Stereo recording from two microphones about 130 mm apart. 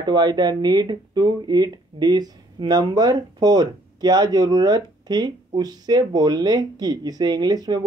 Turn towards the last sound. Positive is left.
turn(degrees=-30)  # may be behind; listen again after turning